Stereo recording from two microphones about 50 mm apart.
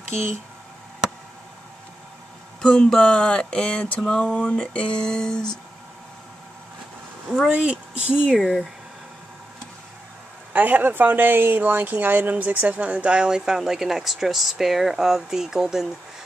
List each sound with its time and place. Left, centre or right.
2.6 s speech: centre
7.4 s speech: right
8.4 s speech: centre
10.5 s speech: right; by 15.9 s centre